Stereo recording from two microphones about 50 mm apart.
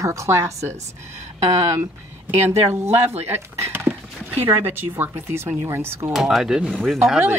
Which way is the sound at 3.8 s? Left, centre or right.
Right.